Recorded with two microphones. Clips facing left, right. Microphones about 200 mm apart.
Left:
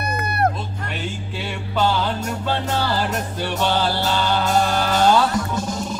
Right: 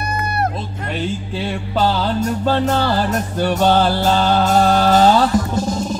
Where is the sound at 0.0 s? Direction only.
60° left (ahead or behind).